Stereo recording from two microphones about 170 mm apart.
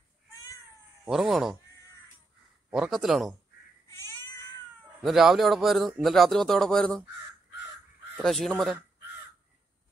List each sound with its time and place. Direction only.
1.0 s a man's voice: centre (ahead or behind)
2.7 s a man's voice: centre (ahead or behind)
3.9 s cat: 15° left (ahead or behind)
5.0 s a man's voice: centre (ahead or behind)
8.2 s a man's voice: centre (ahead or behind)